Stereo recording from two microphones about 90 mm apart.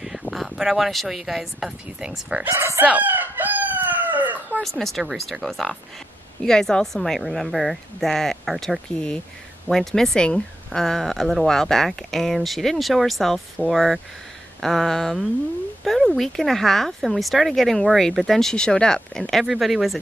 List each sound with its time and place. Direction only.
0.3 s speech: centre (ahead or behind)
2.5 s speech: 35° right (ahead or behind)
2.9 s chicken: 20° right (ahead or behind)
4.6 s speech: centre (ahead or behind)